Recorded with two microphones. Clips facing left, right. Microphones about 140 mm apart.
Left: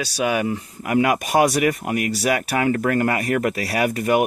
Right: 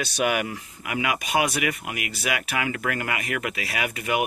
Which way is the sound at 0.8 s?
45° left (ahead or behind).